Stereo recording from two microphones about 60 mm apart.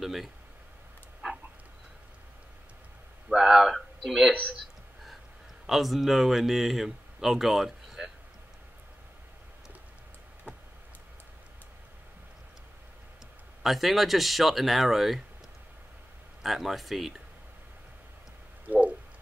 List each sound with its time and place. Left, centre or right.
0.0 s speech: centre
3.3 s a sound: centre
5.7 s speech: centre
13.6 s speech: centre
16.4 s speech: centre
18.7 s a sound: right